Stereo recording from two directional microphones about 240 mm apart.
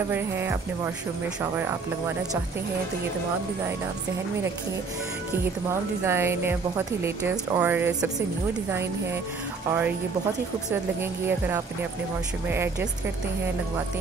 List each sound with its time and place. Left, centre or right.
0.1 s a woman's voice: centre
5.4 s a woman's voice: centre
11.0 s a woman's voice: centre